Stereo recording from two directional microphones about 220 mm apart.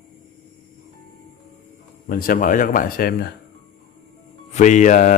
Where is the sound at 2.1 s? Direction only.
40° left (ahead or behind).